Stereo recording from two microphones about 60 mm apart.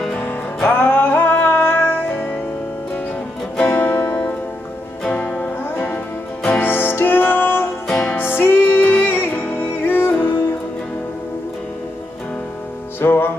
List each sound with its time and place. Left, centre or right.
0.2 s music: left
3.7 s music: left
5.0 s music: centre
5.6 s music: left
7.9 s music: centre
8.2 s music: left
13.0 s music: left